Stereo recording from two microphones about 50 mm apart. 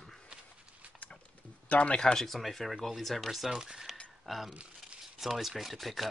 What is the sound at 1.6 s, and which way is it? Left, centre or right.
Speech, left.